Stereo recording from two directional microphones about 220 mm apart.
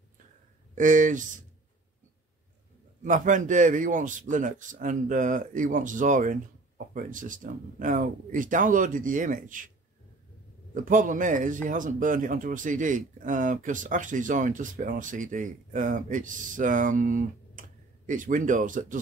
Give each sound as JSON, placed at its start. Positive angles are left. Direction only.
{"t": 0.7, "sound": "a man's voice", "side_deg": -35}
{"t": 3.0, "sound": "a man's voice", "side_deg": -35}
{"t": 10.7, "sound": "a man's voice", "side_deg": -35}